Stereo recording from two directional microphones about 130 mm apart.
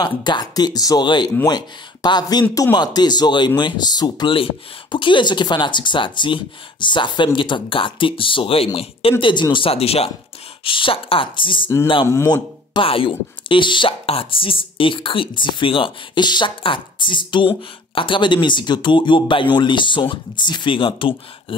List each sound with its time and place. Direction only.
0.0 s speech: 35° left (ahead or behind)